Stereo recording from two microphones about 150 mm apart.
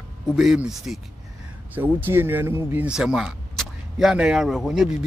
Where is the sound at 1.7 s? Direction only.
15° right (ahead or behind).